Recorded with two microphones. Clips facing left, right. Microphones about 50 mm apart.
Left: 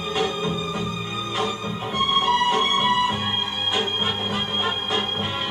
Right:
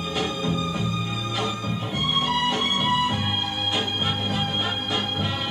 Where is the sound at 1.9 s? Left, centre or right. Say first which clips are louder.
Left 5 dB; left.